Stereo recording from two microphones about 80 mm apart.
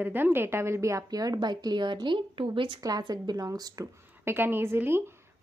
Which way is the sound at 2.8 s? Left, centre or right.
Right.